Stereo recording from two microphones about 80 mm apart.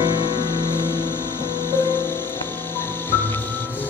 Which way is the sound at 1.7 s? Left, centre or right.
Left.